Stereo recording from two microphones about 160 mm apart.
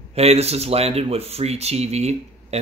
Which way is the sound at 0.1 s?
40° right (ahead or behind).